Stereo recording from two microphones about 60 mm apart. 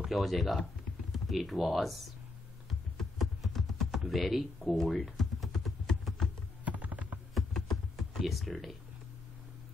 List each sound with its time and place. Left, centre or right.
0.1 s speech: centre
2.7 s a sound: centre
6.6 s computer keyboard: right
7.3 s computer keyboard: centre